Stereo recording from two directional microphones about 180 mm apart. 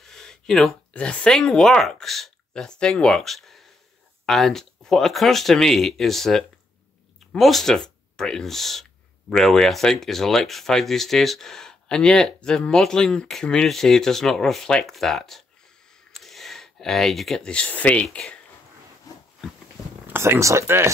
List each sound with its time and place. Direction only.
0.0 s speech: 5° left (ahead or behind)
19.1 s a sound: 20° left (ahead or behind)
20.1 s speech: 15° right (ahead or behind)